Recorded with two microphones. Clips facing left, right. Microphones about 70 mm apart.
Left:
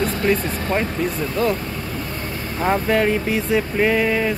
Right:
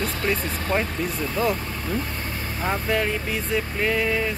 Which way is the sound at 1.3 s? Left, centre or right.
Centre.